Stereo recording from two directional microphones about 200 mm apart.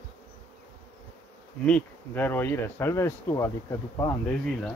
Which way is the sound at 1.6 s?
5° left (ahead or behind).